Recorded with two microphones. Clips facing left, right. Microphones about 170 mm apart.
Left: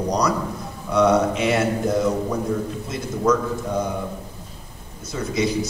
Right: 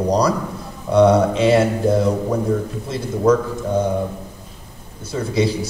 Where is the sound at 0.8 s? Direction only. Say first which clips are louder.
Right 4 dB; 30° right (ahead or behind).